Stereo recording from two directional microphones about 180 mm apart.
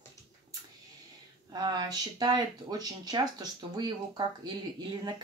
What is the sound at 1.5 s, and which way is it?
Speech, 25° right (ahead or behind).